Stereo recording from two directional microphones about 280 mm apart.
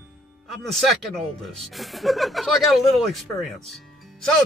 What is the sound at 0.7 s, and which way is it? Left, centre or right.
Speech, centre.